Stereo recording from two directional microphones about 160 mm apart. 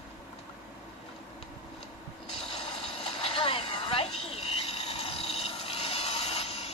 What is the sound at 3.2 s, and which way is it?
Vehicle, 35° left (ahead or behind).